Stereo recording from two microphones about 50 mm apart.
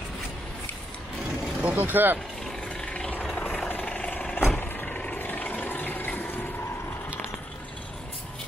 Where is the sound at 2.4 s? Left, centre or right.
Centre.